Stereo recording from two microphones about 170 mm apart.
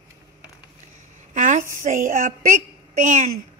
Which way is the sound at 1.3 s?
50° right (ahead or behind).